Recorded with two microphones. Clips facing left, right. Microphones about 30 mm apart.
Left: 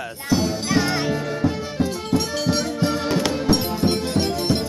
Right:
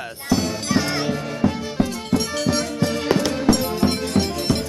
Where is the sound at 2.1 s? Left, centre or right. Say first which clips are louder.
Right 1 dB; centre.